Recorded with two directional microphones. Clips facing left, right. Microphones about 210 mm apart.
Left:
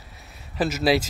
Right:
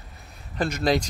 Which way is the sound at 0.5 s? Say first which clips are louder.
Left 2 dB; 5° left (ahead or behind).